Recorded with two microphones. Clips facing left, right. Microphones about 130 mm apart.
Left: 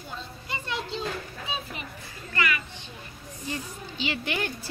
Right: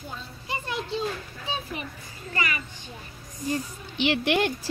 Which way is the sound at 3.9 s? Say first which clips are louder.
Right 7 dB; 70° right (ahead or behind).